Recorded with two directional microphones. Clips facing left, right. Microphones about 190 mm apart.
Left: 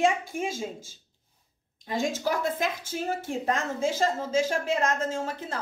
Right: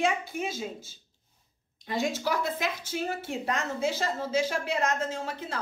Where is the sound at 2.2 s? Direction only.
45° left (ahead or behind).